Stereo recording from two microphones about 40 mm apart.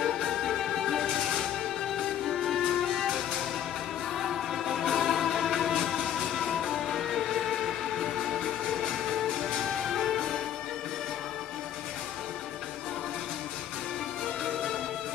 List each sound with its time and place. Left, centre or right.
0.0 s music: centre
1.0 s music: centre
14.4 s music: centre